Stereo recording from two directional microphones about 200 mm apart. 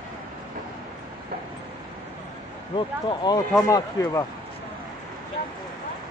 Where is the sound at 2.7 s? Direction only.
20° left (ahead or behind).